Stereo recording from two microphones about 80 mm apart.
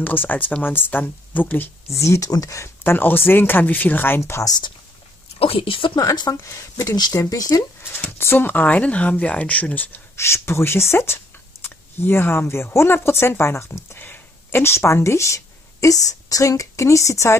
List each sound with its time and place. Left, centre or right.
0.0 s speech: left
2.0 s speech: left
2.8 s speech: left
4.2 s speech: left
5.6 s speech: left
5.9 s speech: left
6.4 s speech: left
7.0 s speech: left
7.8 s speech: left
10.1 s speech: left